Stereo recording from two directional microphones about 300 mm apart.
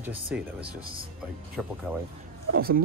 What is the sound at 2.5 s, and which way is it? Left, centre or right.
Speech, right.